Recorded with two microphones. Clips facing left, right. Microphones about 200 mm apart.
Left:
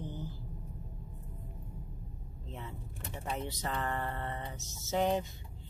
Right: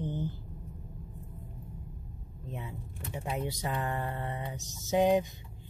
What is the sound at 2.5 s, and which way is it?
Speech, 15° right (ahead or behind).